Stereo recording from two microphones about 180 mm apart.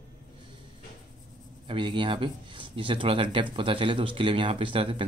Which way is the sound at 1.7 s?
30° right (ahead or behind).